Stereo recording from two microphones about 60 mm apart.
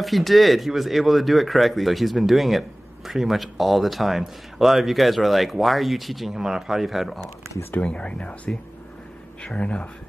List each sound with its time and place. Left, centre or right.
0.0 s speech: centre
7.8 s speech: centre
9.4 s speech: centre